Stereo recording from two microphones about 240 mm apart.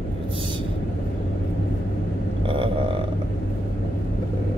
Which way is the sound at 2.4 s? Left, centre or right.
Right.